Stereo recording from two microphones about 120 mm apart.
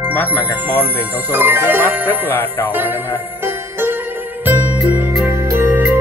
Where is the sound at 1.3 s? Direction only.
20° right (ahead or behind).